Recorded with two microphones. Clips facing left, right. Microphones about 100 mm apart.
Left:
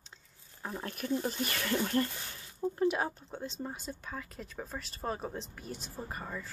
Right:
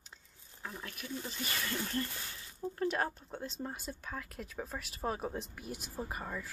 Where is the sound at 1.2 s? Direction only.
65° left (ahead or behind).